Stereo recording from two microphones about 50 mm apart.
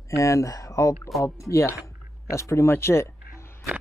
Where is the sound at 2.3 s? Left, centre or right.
Left.